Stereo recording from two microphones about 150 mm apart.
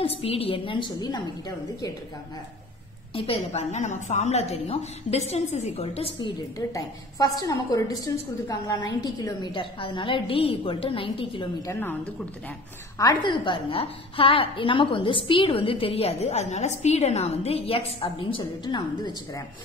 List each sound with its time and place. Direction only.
0.0 s a woman's voice: 40° left (ahead or behind)
3.2 s a woman's voice: 40° left (ahead or behind)
6.6 s a woman's voice: 25° left (ahead or behind)
11.6 s a woman's voice: 15° left (ahead or behind)
12.9 s a woman's voice: 30° left (ahead or behind)